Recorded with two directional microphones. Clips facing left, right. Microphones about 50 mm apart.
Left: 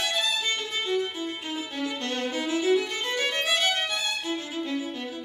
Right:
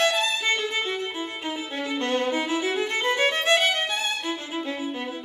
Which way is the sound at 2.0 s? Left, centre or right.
Right.